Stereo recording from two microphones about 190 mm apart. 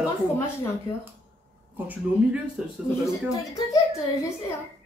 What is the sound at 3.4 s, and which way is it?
Speech, 20° left (ahead or behind).